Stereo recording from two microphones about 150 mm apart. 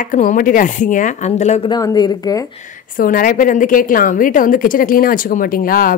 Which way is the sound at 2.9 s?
70° left (ahead or behind).